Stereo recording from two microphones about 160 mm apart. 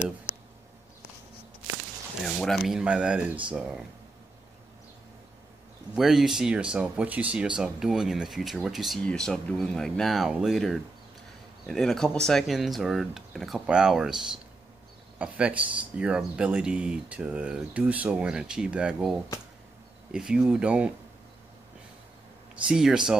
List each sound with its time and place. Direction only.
2.2 s speech: centre (ahead or behind)
5.9 s speech: centre (ahead or behind)
22.7 s speech: 5° right (ahead or behind)